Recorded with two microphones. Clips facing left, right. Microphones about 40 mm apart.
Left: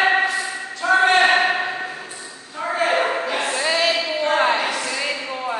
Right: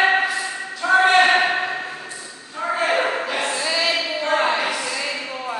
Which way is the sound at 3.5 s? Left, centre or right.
Left.